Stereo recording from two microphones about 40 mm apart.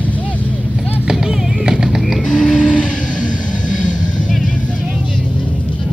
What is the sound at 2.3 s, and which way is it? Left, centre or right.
Vehicle, left.